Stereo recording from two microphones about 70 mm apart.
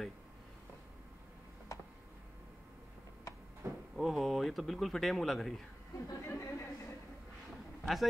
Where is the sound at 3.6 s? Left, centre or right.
Right.